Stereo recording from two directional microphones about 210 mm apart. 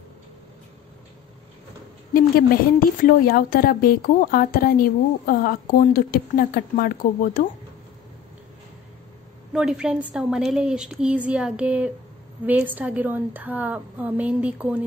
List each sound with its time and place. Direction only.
2.1 s a woman's voice: 45° left (ahead or behind)
9.5 s a woman's voice: 5° right (ahead or behind)